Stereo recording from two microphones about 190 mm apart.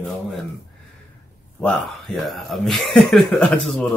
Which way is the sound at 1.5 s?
Centre (ahead or behind).